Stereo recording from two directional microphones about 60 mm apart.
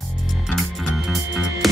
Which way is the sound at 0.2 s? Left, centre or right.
Centre.